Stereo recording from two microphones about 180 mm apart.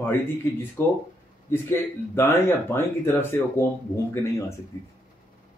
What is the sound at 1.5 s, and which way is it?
Speech, 15° left (ahead or behind).